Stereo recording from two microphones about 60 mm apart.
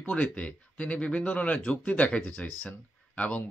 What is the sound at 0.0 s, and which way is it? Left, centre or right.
Speech, left.